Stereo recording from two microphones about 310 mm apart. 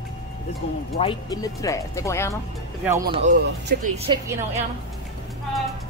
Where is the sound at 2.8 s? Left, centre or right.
Centre.